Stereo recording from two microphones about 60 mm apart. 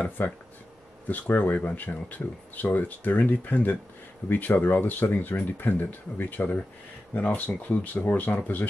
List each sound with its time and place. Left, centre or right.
0.2 s speech: left